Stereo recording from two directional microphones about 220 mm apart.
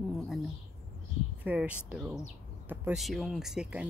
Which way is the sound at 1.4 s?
5° right (ahead or behind).